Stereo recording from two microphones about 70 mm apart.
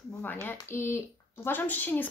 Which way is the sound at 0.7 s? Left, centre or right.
Left.